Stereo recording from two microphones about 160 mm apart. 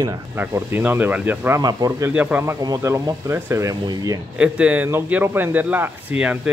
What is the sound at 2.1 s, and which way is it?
Speech, 10° right (ahead or behind).